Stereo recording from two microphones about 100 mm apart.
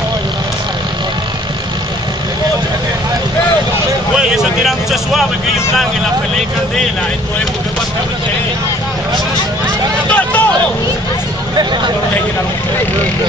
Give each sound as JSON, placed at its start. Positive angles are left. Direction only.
{"t": 4.2, "sound": "speech", "side_deg": -5}
{"t": 10.1, "sound": "vehicle", "side_deg": 15}